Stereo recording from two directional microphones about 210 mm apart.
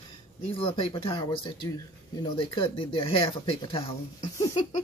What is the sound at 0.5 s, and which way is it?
Speech, 25° left (ahead or behind).